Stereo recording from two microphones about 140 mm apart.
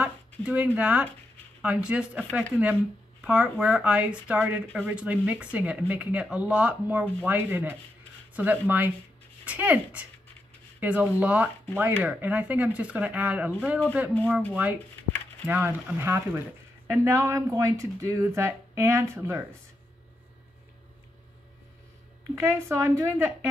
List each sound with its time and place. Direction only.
0.0 s speech: 10° right (ahead or behind)
22.3 s speech: 20° right (ahead or behind)